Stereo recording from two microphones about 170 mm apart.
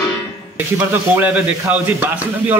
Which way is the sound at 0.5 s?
10° right (ahead or behind).